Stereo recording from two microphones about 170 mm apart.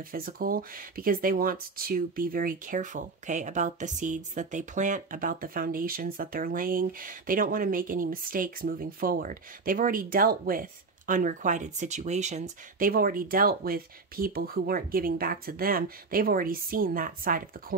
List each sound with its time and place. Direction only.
0.1 s speech: 60° right (ahead or behind)